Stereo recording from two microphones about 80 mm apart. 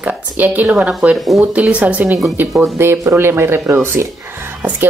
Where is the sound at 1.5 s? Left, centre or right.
Centre.